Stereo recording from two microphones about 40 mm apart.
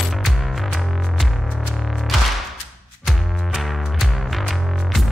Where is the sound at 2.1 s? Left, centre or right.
Centre.